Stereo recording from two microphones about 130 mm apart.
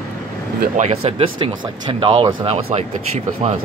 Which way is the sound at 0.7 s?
65° right (ahead or behind).